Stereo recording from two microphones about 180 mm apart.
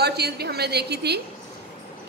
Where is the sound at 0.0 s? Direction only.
65° right (ahead or behind).